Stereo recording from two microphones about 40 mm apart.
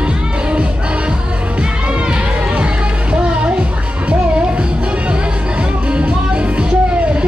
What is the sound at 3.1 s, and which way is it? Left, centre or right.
Music, right.